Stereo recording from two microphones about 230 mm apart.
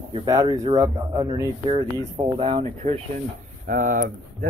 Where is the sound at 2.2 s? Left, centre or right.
Right.